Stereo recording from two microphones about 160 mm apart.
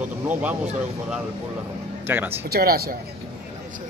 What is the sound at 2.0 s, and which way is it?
Speech, 15° right (ahead or behind).